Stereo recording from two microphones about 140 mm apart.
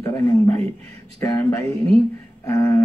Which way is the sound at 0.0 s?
25° left (ahead or behind).